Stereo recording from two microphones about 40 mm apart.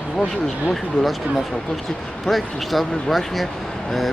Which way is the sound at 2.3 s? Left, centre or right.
Centre.